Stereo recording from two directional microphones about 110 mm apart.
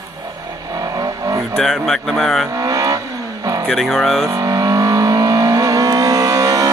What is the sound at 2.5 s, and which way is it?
Vehicle, 30° right (ahead or behind).